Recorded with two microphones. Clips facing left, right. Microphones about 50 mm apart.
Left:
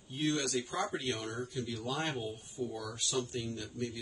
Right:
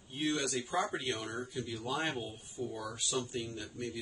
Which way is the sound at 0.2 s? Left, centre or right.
Centre.